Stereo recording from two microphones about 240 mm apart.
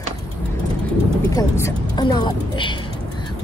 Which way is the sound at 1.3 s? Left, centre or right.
Centre.